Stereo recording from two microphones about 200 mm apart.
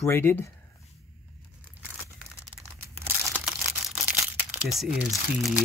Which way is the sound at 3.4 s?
5° right (ahead or behind).